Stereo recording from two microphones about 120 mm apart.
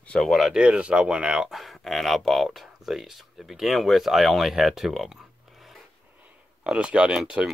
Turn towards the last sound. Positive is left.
turn(degrees=-5)  # may be behind; listen again after turning